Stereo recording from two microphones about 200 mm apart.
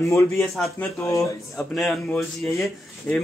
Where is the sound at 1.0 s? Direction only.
15° left (ahead or behind).